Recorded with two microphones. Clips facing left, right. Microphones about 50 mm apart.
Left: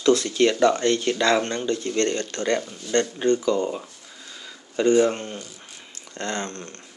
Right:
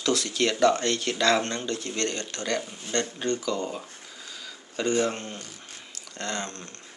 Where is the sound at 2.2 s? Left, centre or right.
Left.